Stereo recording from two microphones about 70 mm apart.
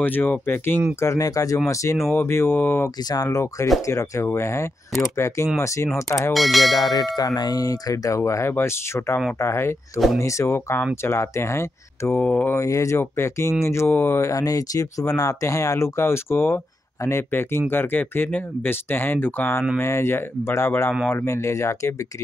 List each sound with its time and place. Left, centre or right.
0.0 s speech: left
0.9 s speech: left
1.2 s tubular bells: left
1.7 s speech: left
3.0 s speech: left
3.3 s speech: left
6.3 s speech: centre
6.8 s tubular bells: left
8.2 s speech: left
12.2 s speech: left
12.4 s speech: left
14.3 s speech: left